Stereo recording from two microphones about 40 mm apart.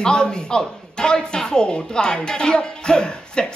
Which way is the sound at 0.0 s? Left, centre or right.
Left.